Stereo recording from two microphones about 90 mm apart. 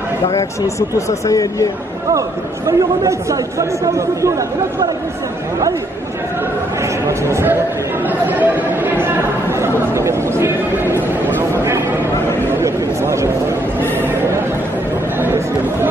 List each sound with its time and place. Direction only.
0.3 s speech: 35° left (ahead or behind)
2.1 s speech: 40° right (ahead or behind)
6.8 s speech: 30° right (ahead or behind)
8.1 s chatter: 20° right (ahead or behind)
11.2 s a sound: 25° right (ahead or behind)
15.1 s chatter: 25° right (ahead or behind)